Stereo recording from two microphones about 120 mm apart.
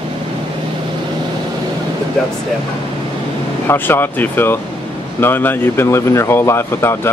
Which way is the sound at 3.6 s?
20° left (ahead or behind).